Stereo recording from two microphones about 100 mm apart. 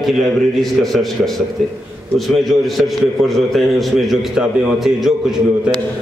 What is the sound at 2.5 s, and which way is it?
A man's voice, centre (ahead or behind).